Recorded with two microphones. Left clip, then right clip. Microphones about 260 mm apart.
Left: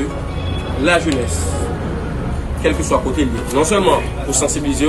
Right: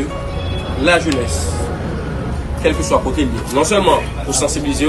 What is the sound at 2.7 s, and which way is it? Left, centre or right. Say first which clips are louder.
Speech: right 1 dB; centre.